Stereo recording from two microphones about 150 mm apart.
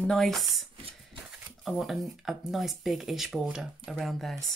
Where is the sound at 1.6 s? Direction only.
Centre (ahead or behind).